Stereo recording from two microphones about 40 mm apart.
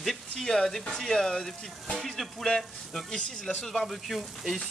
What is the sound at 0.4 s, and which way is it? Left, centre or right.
Speech, centre.